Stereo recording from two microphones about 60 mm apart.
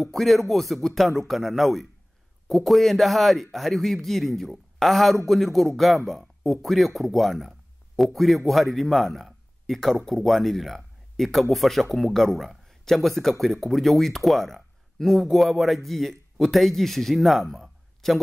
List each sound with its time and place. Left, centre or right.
0.0 s speech: centre